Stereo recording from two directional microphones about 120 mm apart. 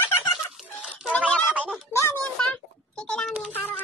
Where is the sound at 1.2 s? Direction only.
5° left (ahead or behind).